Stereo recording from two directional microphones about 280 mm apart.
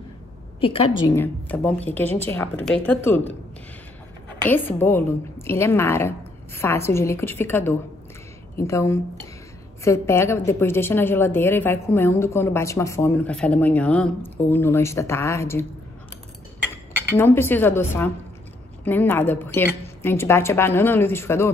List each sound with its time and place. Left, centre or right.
0.6 s a woman's voice: centre
1.1 s a woman's voice: centre
4.5 s a woman's voice: centre
16.7 s a woman's voice: centre